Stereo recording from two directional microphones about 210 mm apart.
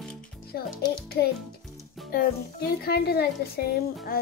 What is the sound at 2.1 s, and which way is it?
Speech, 45° left (ahead or behind).